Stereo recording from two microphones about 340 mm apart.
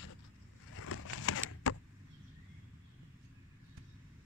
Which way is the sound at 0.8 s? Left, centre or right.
Left.